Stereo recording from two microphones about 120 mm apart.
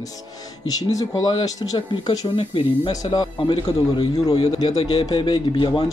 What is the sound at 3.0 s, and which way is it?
A man's voice, 40° left (ahead or behind).